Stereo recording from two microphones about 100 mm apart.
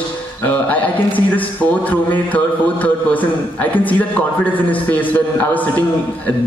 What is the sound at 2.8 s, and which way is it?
A man's voice, 15° left (ahead or behind).